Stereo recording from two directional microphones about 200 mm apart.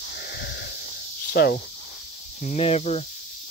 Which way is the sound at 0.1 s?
55° left (ahead or behind).